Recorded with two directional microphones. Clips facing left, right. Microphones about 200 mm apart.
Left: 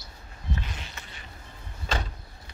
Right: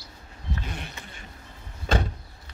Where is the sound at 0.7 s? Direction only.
55° right (ahead or behind).